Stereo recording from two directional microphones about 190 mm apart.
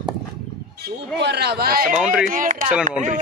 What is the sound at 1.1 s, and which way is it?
Speech, 60° right (ahead or behind).